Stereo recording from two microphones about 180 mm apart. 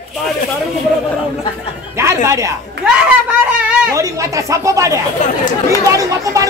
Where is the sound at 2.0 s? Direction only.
15° right (ahead or behind).